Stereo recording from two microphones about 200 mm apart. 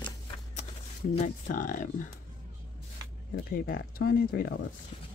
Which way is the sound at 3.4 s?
45° left (ahead or behind).